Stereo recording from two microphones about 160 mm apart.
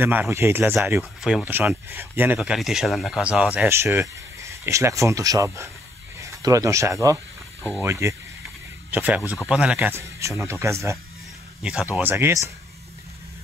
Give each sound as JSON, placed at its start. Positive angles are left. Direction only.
{"t": 0.0, "sound": "speech", "side_deg": -10}
{"t": 11.6, "sound": "speech", "side_deg": -5}